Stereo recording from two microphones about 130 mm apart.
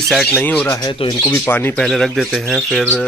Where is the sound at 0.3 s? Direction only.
10° left (ahead or behind).